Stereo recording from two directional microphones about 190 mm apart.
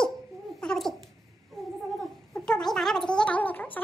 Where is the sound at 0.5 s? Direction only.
5° left (ahead or behind).